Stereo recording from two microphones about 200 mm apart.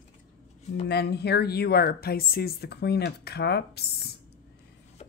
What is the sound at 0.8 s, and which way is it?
Speech, 55° left (ahead or behind).